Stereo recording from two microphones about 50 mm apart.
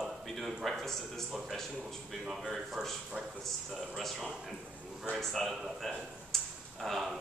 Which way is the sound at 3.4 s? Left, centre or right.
Centre.